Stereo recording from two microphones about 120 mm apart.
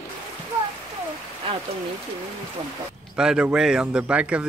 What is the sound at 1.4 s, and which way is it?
Rain, 50° right (ahead or behind).